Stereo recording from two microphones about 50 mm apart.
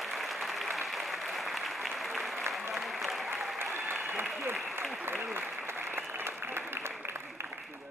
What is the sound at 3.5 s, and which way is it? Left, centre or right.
Applause, right.